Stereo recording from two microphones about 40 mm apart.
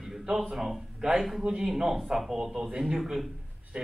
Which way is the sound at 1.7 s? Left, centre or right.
Centre.